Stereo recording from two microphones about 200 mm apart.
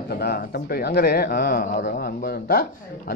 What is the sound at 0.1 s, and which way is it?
Speech, 50° left (ahead or behind).